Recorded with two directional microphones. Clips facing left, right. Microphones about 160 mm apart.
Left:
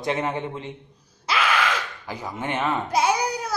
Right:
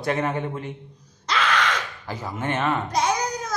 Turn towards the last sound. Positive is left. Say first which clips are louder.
# left 1 dB
turn(degrees=10)  # may be behind; listen again after turning